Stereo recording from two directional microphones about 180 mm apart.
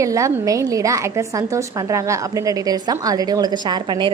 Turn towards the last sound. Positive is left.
turn(degrees=-25)  # may be behind; listen again after turning